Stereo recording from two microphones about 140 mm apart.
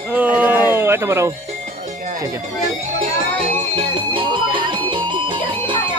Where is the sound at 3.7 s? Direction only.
35° right (ahead or behind).